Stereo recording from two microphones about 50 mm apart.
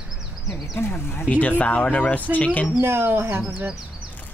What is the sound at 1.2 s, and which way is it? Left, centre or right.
Speech, left.